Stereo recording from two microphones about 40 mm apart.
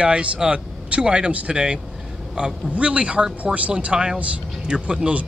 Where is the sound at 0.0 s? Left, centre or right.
Right.